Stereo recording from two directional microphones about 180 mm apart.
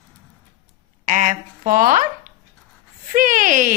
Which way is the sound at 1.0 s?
45° right (ahead or behind).